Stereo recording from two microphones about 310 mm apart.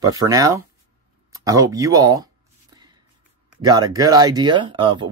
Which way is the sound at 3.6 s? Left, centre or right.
Centre.